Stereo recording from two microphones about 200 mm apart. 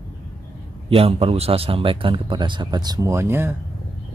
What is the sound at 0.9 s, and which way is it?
Speech, 30° right (ahead or behind).